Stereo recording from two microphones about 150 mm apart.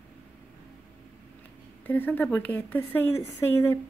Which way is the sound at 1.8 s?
10° left (ahead or behind).